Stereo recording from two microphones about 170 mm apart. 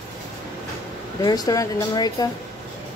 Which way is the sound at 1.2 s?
20° left (ahead or behind).